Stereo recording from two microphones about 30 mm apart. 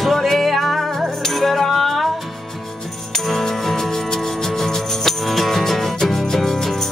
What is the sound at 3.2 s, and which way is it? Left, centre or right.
Music, centre.